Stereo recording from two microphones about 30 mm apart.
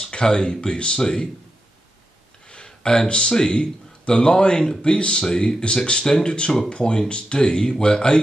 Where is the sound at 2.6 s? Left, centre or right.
Left.